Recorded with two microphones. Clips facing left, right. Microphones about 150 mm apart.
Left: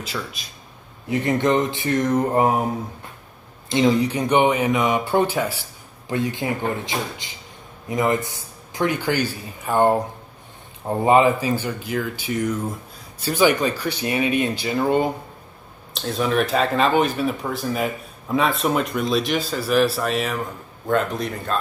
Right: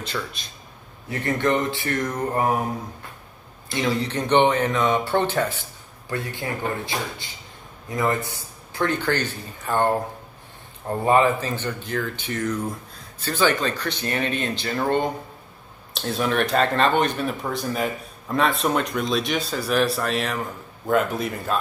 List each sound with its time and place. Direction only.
0.0 s speech: 5° left (ahead or behind)
1.1 s mantra: 15° left (ahead or behind)
3.6 s speech: 20° left (ahead or behind)
6.0 s mantra: 20° left (ahead or behind)
7.9 s speech: 20° left (ahead or behind); by 21.5 s 5° right (ahead or behind)